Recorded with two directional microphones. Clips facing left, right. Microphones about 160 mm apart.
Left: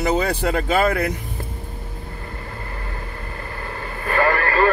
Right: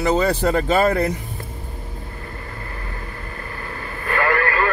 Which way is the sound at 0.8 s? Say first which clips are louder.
Right 2 dB; 35° right (ahead or behind).